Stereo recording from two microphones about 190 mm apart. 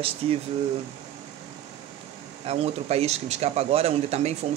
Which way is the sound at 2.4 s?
30° right (ahead or behind).